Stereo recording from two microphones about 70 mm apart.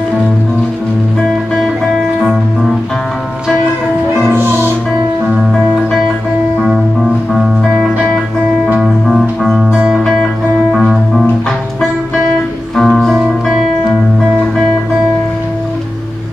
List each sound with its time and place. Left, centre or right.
4.4 s music: right
5.5 s music: centre
9.1 s music: centre
12.7 s music: centre